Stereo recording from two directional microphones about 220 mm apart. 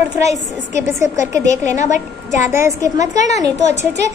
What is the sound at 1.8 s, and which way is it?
Speech, 35° left (ahead or behind).